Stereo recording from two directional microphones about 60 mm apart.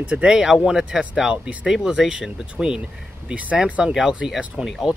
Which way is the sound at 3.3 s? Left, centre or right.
Right.